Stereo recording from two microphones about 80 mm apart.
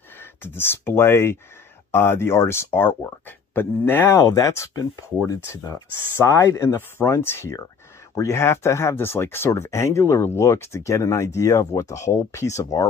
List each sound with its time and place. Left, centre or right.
0.2 s speech: left